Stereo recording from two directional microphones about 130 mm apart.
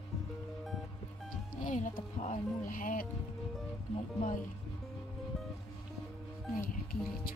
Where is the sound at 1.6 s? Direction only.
90° left.